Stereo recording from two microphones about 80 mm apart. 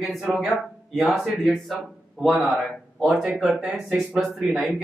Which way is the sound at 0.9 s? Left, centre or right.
Centre.